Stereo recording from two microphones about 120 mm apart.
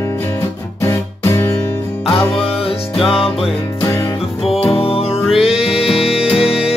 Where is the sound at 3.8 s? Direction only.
25° left (ahead or behind).